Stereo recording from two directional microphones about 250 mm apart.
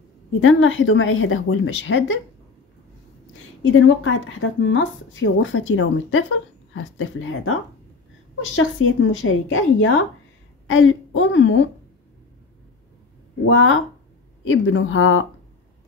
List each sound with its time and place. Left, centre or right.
0.4 s speech: left
3.6 s speech: left
13.5 s speech: left